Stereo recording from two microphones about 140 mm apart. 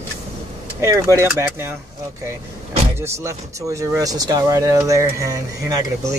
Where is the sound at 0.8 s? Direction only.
20° right (ahead or behind).